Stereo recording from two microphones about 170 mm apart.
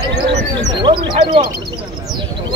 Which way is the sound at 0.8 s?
30° right (ahead or behind).